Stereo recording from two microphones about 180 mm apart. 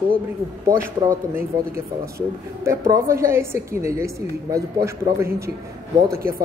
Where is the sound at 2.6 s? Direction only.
15° right (ahead or behind).